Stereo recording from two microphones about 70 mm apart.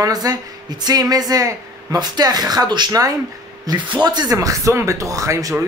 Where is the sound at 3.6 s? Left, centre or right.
Right.